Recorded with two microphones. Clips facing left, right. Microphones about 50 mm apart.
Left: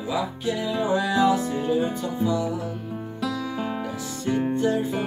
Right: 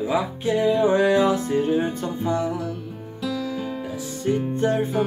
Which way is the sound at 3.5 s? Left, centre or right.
Left.